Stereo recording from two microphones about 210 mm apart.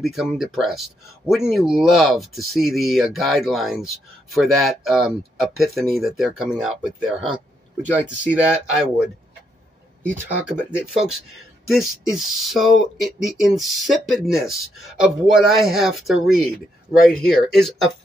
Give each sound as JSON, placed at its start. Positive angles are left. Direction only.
{"t": 0.0, "sound": "speech", "side_deg": 0}
{"t": 10.7, "sound": "speech", "side_deg": -5}